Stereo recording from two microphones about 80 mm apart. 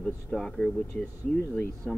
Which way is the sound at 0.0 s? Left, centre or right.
Centre.